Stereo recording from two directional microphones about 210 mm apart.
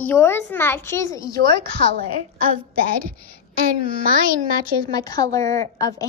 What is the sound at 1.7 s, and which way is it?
Speech, 45° right (ahead or behind).